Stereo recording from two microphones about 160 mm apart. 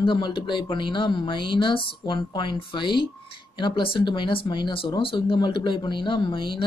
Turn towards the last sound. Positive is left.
turn(degrees=30)  # may be behind; listen again after turning